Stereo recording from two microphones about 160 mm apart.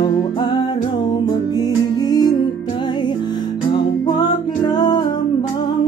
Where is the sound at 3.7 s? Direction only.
25° left (ahead or behind).